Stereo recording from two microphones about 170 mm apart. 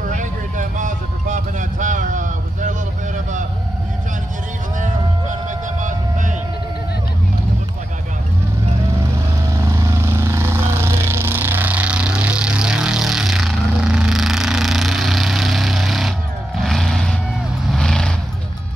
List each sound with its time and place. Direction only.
0.1 s a sound: 50° right (ahead or behind)
5.8 s vehicle: 50° right (ahead or behind)
9.5 s vehicle: 20° right (ahead or behind); by 18.1 s 5° left (ahead or behind)